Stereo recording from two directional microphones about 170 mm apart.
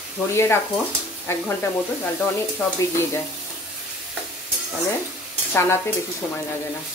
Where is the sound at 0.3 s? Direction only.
15° left (ahead or behind).